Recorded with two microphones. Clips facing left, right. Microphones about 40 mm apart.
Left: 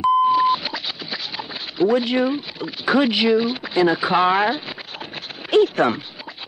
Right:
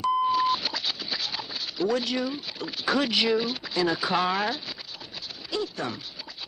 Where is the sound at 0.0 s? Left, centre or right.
Centre.